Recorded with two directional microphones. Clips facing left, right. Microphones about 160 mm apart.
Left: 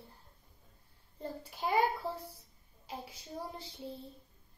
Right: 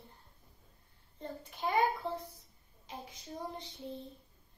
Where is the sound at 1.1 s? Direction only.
10° left (ahead or behind).